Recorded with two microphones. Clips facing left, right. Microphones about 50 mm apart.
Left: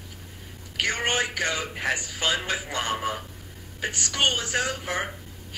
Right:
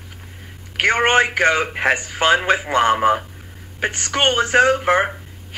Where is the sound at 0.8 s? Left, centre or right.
Right.